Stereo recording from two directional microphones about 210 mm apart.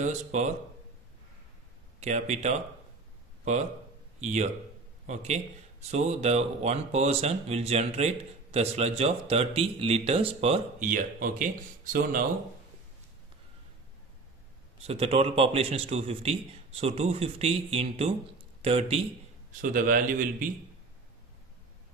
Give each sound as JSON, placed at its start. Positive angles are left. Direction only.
{"t": 0.0, "sound": "speech", "side_deg": -35}
{"t": 2.0, "sound": "speech", "side_deg": -35}
{"t": 4.2, "sound": "a man's voice", "side_deg": -35}
{"t": 14.9, "sound": "a man's voice", "side_deg": -30}
{"t": 19.6, "sound": "speech", "side_deg": -40}